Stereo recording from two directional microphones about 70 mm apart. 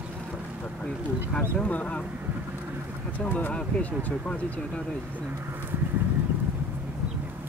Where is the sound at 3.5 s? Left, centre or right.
Centre.